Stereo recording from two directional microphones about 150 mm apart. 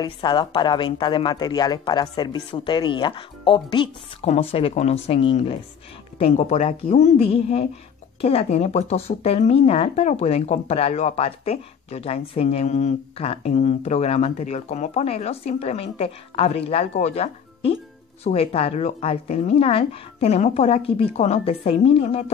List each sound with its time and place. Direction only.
0.0 s a woman's voice: 30° left (ahead or behind)